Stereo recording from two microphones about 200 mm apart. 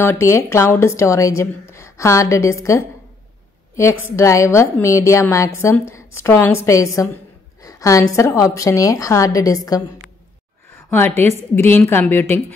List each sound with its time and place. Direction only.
0.0 s a woman's voice: 10° left (ahead or behind)
4.0 s a woman's voice: 15° left (ahead or behind)
10.9 s a woman's voice: 10° left (ahead or behind)